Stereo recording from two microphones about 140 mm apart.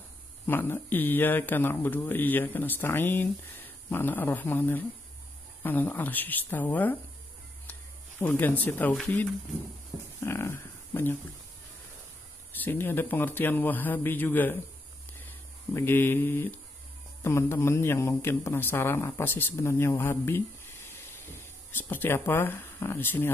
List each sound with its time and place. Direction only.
0.5 s a man's voice: 15° left (ahead or behind)
8.2 s a man's voice: 15° left (ahead or behind)
12.5 s a man's voice: 15° left (ahead or behind)
15.7 s a man's voice: 15° left (ahead or behind)